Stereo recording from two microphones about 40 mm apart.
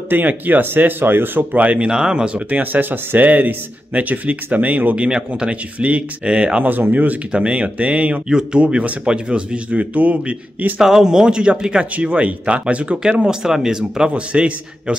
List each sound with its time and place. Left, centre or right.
0.1 s speech: right
1.8 s speech: right
2.5 s speech: right
4.9 s speech: right
6.6 s speech: right
7.3 s a man's voice: right
9.8 s a man's voice: right
10.8 s speech: centre; by 13.1 s right
13.2 s speech: centre
14.1 s speech: right